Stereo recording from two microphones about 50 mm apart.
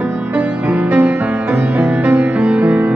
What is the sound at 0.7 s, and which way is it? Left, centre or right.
Music, right.